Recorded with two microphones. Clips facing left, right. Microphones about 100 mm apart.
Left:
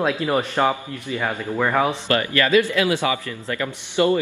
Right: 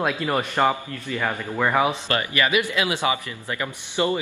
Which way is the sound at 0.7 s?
15° left (ahead or behind).